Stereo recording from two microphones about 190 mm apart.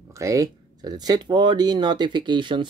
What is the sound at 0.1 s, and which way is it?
Speech, 15° right (ahead or behind).